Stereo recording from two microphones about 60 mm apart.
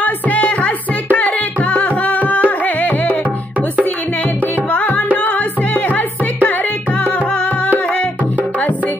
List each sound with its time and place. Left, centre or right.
0.0 s music: left
4.6 s music: left